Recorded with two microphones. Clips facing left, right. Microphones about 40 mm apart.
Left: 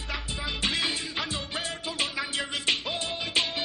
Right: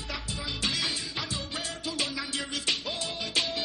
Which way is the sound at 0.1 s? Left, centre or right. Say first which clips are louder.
Left 3 dB; left.